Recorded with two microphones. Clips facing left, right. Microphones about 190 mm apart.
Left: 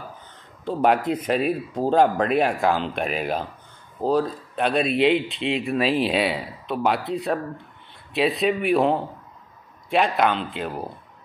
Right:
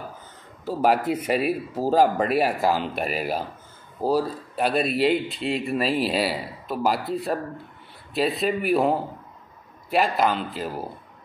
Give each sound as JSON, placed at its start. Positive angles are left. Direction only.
{"t": 0.7, "sound": "speech", "side_deg": -5}